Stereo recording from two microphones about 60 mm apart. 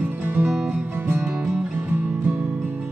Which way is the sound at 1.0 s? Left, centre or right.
Right.